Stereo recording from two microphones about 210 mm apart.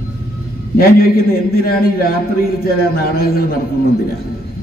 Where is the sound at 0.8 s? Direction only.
45° left (ahead or behind).